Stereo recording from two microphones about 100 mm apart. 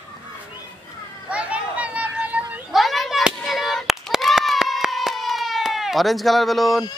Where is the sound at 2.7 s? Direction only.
Centre (ahead or behind).